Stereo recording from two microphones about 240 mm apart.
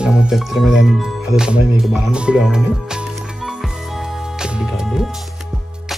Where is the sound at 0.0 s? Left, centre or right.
Centre.